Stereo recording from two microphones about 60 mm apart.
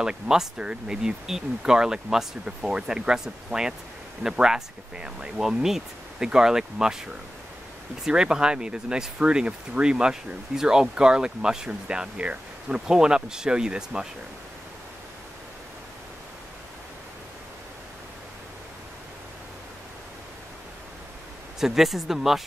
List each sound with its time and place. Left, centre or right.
0.0 s speech: centre
8.0 s speech: centre
21.5 s speech: centre